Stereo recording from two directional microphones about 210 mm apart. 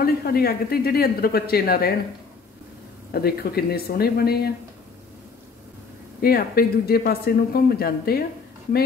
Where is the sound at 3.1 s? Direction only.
45° left (ahead or behind).